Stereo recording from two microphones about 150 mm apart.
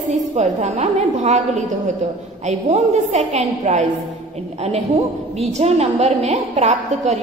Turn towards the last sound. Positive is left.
turn(degrees=-50)  # may be behind; listen again after turning